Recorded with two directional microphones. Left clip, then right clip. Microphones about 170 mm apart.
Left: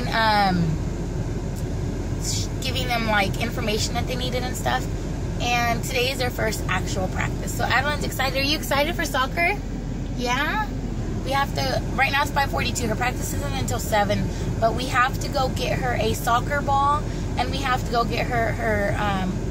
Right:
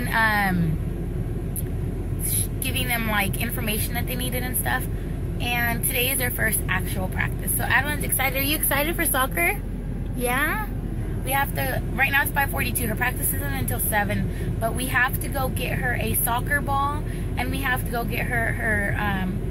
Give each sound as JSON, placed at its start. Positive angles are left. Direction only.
{"t": 0.1, "sound": "vehicle", "side_deg": 10}
{"t": 2.7, "sound": "speech", "side_deg": 10}
{"t": 8.3, "sound": "a woman's voice", "side_deg": -10}
{"t": 8.9, "sound": "a woman's voice", "side_deg": -35}
{"t": 11.2, "sound": "speech", "side_deg": 0}